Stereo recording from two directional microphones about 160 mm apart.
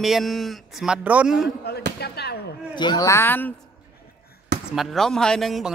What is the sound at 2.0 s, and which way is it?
Speech, 90° left.